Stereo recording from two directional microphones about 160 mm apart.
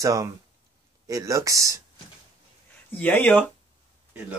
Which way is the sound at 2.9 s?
10° left (ahead or behind).